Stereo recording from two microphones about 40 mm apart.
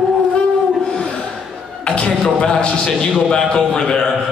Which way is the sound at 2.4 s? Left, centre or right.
Left.